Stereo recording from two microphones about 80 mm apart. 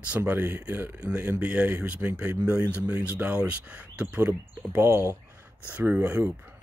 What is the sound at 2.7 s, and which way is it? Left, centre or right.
Speech, centre.